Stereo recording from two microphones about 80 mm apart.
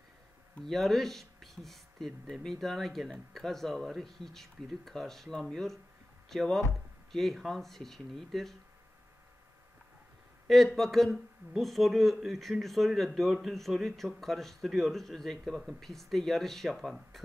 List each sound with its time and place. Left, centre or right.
0.6 s speech: centre
10.8 s speech: centre